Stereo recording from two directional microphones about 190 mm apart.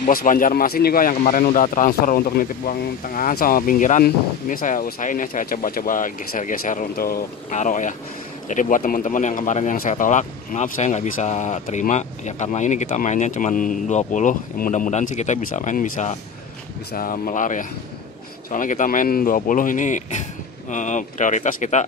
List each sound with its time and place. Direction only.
0.0 s speech: 45° left (ahead or behind)
16.9 s speech: 45° left (ahead or behind)